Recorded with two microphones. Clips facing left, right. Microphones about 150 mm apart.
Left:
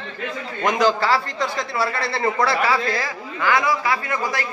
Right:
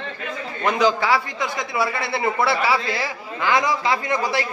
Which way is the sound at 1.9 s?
15° right (ahead or behind).